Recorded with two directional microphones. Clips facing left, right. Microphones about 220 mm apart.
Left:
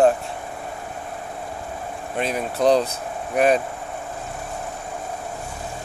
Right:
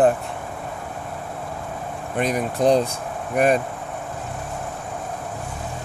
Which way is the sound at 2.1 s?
15° right (ahead or behind).